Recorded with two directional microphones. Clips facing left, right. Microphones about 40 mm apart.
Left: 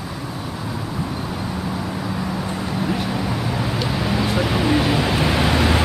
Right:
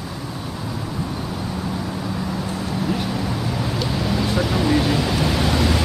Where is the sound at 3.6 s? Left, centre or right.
Centre.